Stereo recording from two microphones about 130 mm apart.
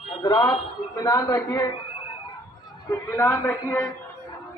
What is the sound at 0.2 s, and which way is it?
A man's voice, 30° left (ahead or behind).